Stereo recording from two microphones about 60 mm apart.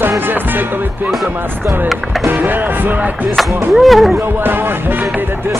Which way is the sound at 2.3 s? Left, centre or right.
Right.